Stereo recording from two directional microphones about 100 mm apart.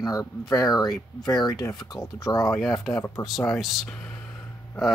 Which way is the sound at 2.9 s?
30° left (ahead or behind).